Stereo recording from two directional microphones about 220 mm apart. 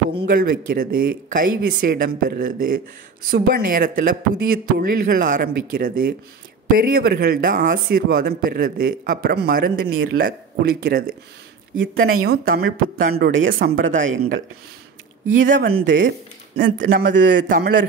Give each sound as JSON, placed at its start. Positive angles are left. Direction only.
{"t": 0.2, "sound": "speech", "side_deg": -40}
{"t": 11.7, "sound": "speech", "side_deg": -65}
{"t": 12.3, "sound": "speech", "side_deg": -45}
{"t": 13.2, "sound": "speech", "side_deg": -60}
{"t": 15.2, "sound": "speech", "side_deg": -40}
{"t": 15.9, "sound": "speech", "side_deg": -60}
{"t": 16.7, "sound": "speech", "side_deg": -40}